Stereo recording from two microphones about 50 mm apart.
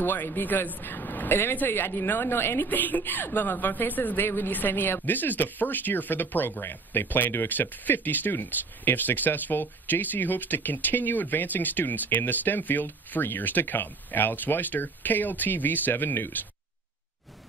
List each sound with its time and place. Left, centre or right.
0.0 s speech: left
2.7 s speech: left